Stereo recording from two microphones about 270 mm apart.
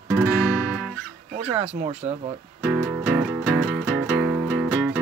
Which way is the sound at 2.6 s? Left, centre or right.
Centre.